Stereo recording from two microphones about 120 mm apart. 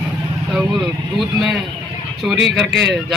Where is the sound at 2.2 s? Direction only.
5° right (ahead or behind).